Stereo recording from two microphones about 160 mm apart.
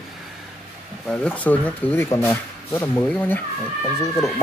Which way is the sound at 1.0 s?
5° left (ahead or behind).